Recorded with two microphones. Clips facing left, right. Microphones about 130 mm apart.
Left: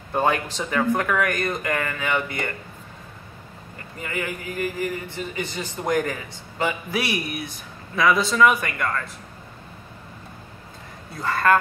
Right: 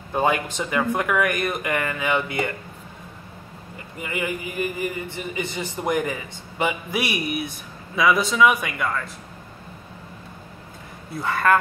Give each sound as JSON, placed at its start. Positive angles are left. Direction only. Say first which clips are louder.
{"t": 0.1, "sound": "speech", "louder": "even", "side_deg": -10}
{"t": 4.0, "sound": "a man's voice", "louder": "right 2 dB", "side_deg": -15}
{"t": 11.1, "sound": "a man's voice", "louder": "even", "side_deg": -5}